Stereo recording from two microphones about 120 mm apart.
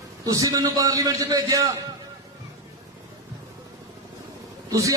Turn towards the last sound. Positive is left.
turn(degrees=-25)  # may be behind; listen again after turning